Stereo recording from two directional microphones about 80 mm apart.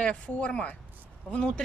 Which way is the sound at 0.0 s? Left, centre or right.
Centre.